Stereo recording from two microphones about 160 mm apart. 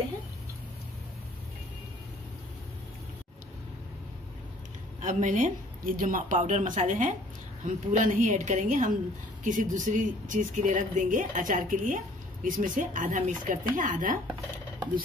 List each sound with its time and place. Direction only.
5.0 s speech: 50° right (ahead or behind)